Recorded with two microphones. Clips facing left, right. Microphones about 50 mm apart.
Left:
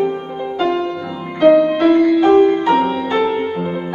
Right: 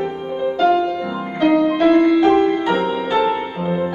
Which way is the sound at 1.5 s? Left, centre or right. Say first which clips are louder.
Left 1 dB; centre.